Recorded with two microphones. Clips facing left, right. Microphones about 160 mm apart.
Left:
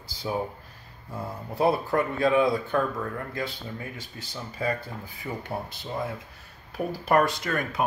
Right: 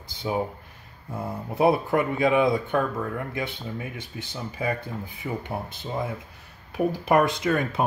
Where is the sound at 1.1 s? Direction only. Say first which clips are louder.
Right 3 dB; 20° right (ahead or behind).